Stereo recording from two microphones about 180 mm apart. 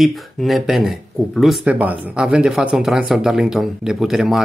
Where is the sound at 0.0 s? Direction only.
Centre (ahead or behind).